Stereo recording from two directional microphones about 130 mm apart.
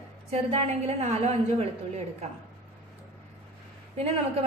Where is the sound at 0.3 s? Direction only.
55° right (ahead or behind).